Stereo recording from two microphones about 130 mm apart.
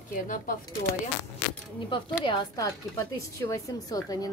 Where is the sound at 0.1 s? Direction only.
90° left.